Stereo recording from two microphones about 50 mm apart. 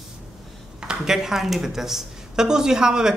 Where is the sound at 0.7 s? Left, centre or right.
Centre.